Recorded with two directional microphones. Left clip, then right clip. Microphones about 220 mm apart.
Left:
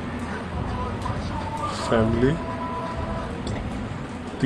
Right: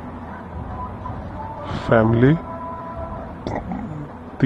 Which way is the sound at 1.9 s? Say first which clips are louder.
Right 6 dB; 15° right (ahead or behind).